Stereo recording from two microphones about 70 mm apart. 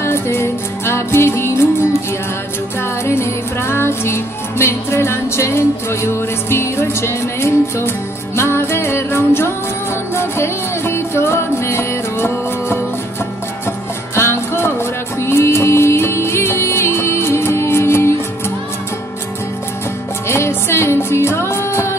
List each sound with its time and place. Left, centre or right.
0.0 s music: left
3.1 s music: left
14.1 s music: left
20.2 s music: left